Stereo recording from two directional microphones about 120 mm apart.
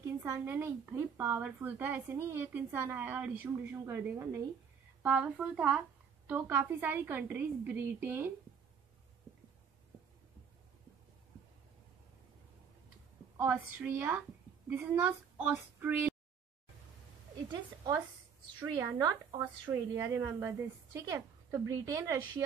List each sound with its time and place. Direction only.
0.0 s speech: 20° right (ahead or behind)
5.0 s speech: 10° right (ahead or behind)
13.4 s a woman's voice: 15° right (ahead or behind)
18.9 s a woman's voice: 35° right (ahead or behind)